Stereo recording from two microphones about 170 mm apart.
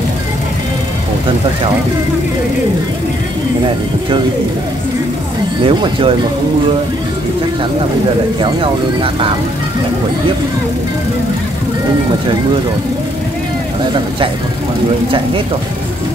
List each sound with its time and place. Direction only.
5.6 s speech: 30° right (ahead or behind)
8.4 s speech: 30° right (ahead or behind)
15.0 s speech: 30° right (ahead or behind)